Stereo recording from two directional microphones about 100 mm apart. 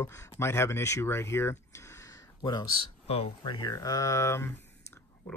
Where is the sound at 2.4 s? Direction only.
45° left (ahead or behind).